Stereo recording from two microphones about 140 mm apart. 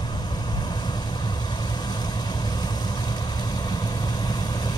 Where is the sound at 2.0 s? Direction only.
30° left (ahead or behind).